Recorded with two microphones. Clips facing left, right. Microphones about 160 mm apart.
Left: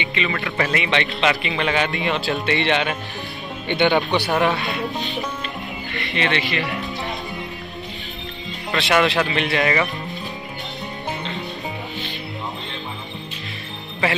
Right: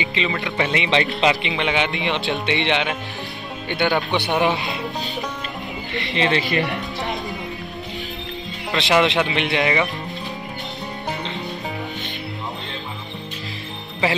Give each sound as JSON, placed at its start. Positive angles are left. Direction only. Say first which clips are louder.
{"t": 0.2, "sound": "a man's voice", "louder": "even", "side_deg": -20}
{"t": 5.9, "sound": "speech", "louder": "right 2 dB", "side_deg": -25}
{"t": 8.7, "sound": "a man's voice", "louder": "right 1 dB", "side_deg": -20}